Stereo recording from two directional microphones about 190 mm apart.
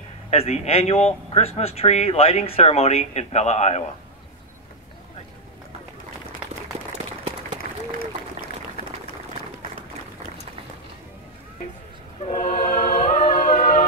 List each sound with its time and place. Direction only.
0.3 s a man's voice: 35° left (ahead or behind)
12.3 s choir: 45° left (ahead or behind)